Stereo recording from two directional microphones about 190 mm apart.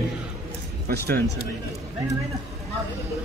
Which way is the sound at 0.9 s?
60° right (ahead or behind).